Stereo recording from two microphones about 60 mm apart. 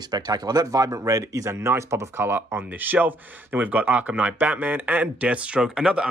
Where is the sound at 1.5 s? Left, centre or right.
Right.